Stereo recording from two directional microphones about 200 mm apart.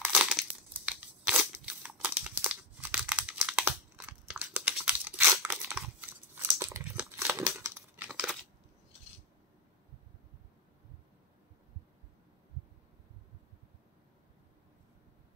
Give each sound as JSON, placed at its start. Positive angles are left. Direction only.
{"t": 0.0, "sound": "crumpling", "side_deg": -5}